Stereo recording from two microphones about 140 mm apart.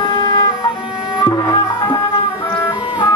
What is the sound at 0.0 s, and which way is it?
Emergency vehicle, 25° left (ahead or behind).